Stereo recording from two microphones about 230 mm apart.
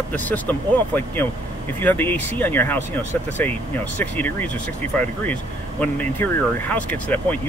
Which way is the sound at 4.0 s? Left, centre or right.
Centre.